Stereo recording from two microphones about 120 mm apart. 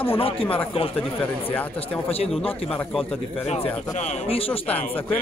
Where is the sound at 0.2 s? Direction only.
50° left (ahead or behind).